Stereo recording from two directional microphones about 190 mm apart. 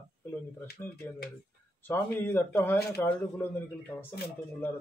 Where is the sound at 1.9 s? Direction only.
10° left (ahead or behind).